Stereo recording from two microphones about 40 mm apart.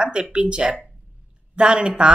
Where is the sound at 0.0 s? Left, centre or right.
Right.